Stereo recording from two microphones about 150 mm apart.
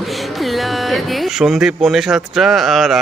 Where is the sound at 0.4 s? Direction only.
Centre (ahead or behind).